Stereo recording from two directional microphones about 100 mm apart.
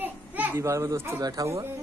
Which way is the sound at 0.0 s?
15° right (ahead or behind).